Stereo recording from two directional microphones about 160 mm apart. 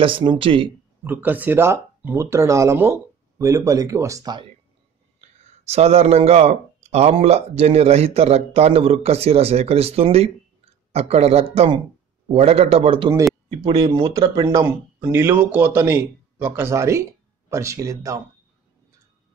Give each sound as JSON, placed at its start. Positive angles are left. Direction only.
{"t": 0.0, "sound": "speech", "side_deg": -30}
{"t": 1.0, "sound": "speech", "side_deg": -10}
{"t": 5.6, "sound": "speech", "side_deg": -40}